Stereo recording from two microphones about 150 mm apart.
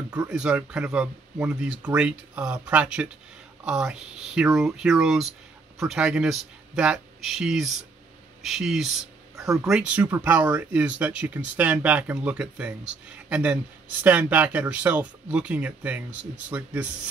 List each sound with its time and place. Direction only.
0.1 s speech: 5° right (ahead or behind)